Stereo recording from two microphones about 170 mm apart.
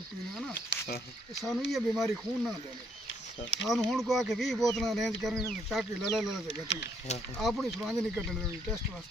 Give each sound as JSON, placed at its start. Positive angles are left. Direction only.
{"t": 0.6, "sound": "speech", "side_deg": 80}
{"t": 1.7, "sound": "speech", "side_deg": 0}
{"t": 3.1, "sound": "a sound", "side_deg": 90}
{"t": 3.7, "sound": "speech", "side_deg": 0}